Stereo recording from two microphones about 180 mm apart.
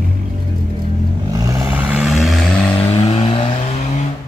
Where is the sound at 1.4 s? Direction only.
10° right (ahead or behind); by 2.8 s 5° left (ahead or behind).